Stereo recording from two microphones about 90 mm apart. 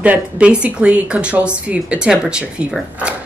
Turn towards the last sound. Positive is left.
turn(degrees=-10)  # may be behind; listen again after turning